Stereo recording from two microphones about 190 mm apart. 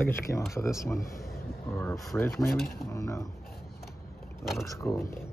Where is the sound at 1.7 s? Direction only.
10° left (ahead or behind).